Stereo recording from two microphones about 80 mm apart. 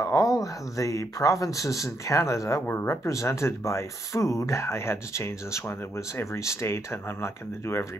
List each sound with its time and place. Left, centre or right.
0.0 s speech: left